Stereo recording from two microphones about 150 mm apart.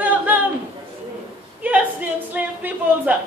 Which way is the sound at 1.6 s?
10° right (ahead or behind).